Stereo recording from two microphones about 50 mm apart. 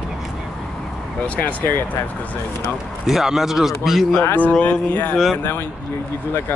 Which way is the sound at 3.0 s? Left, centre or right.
Centre.